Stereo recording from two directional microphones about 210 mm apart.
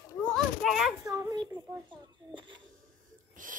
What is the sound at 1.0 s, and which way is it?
A child's voice, 15° right (ahead or behind).